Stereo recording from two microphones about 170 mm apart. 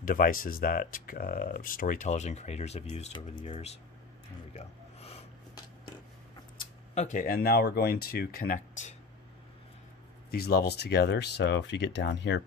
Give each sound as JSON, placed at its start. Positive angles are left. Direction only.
{"t": 0.0, "sound": "speech", "side_deg": 55}
{"t": 4.6, "sound": "a sound", "side_deg": 35}
{"t": 6.6, "sound": "speech", "side_deg": 45}
{"t": 10.3, "sound": "speech", "side_deg": 65}